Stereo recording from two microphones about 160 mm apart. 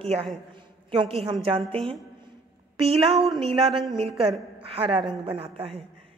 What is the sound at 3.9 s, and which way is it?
A woman's voice, 40° right (ahead or behind).